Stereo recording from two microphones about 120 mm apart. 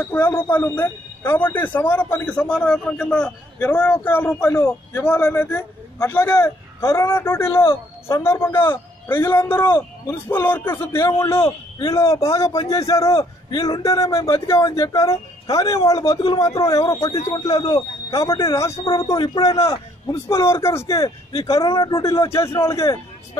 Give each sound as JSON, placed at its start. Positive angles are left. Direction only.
{"t": 0.0, "sound": "speech", "side_deg": 15}
{"t": 19.6, "sound": "speech", "side_deg": 25}